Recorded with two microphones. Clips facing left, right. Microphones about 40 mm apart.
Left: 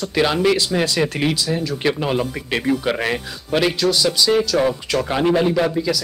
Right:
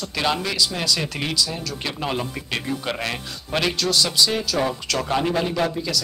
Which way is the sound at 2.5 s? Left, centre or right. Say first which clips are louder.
Left 8 dB; centre.